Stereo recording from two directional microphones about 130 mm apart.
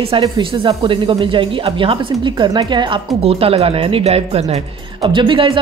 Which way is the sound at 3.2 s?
50° right (ahead or behind).